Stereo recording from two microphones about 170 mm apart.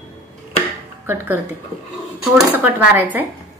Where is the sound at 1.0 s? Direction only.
10° right (ahead or behind).